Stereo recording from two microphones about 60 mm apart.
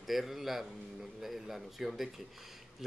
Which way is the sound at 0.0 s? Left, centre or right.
Centre.